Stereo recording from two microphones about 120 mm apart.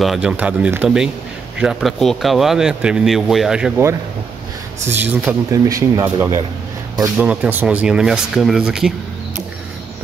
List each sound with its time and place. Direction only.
0.0 s speech: 5° right (ahead or behind)
4.8 s speech: 15° right (ahead or behind)
5.5 s speech: 25° right (ahead or behind)
7.2 s speech: 10° right (ahead or behind)